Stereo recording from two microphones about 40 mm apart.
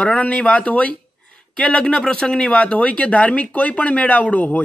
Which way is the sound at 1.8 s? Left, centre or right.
Centre.